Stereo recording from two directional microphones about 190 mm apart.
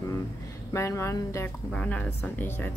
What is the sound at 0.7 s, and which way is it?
Speech, 15° left (ahead or behind).